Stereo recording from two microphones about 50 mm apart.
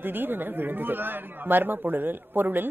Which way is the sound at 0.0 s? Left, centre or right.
Right.